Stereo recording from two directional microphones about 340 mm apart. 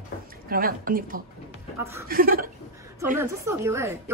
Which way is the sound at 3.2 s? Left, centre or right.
Centre.